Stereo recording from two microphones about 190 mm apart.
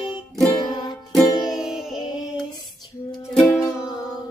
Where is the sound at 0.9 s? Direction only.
Centre (ahead or behind).